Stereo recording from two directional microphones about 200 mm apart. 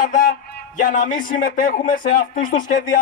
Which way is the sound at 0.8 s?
40° left (ahead or behind).